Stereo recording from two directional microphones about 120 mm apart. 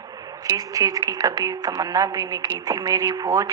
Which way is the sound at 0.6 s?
30° right (ahead or behind).